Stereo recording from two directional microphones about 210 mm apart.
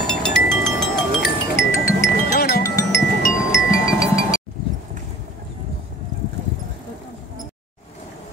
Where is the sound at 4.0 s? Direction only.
15° left (ahead or behind).